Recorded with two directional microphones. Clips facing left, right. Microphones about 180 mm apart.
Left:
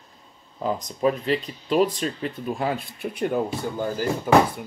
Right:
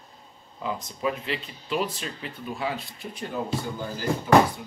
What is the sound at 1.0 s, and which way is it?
A man's voice, 40° left (ahead or behind).